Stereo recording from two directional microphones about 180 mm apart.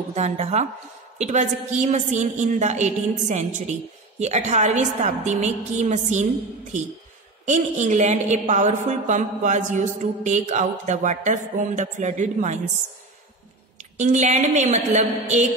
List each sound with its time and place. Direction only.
0.1 s a woman's voice: 40° right (ahead or behind)
7.4 s a woman's voice: 40° right (ahead or behind)
13.7 s a woman's voice: 40° right (ahead or behind)